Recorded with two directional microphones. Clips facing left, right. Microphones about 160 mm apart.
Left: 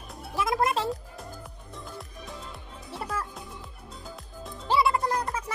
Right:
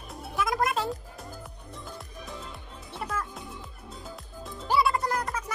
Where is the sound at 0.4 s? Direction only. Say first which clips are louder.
Left 1 dB; 25° left (ahead or behind).